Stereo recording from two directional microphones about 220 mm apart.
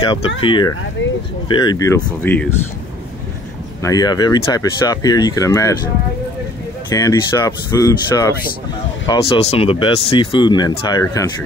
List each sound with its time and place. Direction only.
0.0 s speech: 20° left (ahead or behind)
1.0 s speech: 55° left (ahead or behind)
1.5 s speech: 20° left (ahead or behind)
3.8 s speech: 15° left (ahead or behind)
6.9 s speech: 15° left (ahead or behind)